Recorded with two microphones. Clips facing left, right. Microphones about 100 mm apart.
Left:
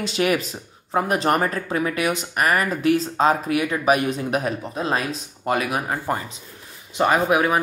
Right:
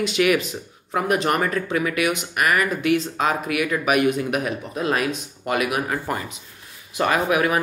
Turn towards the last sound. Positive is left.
turn(degrees=25)  # may be behind; listen again after turning